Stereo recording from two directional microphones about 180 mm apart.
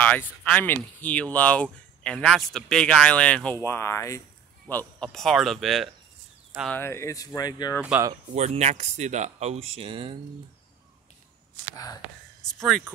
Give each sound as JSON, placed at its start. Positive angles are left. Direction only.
{"t": 0.1, "sound": "speech", "side_deg": 5}
{"t": 6.7, "sound": "speech", "side_deg": 15}
{"t": 7.8, "sound": "speech", "side_deg": -10}
{"t": 8.3, "sound": "speech", "side_deg": -40}
{"t": 11.7, "sound": "speech", "side_deg": 20}
{"t": 12.4, "sound": "speech", "side_deg": 0}